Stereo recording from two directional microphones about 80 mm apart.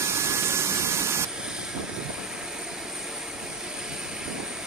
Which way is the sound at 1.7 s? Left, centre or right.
Centre.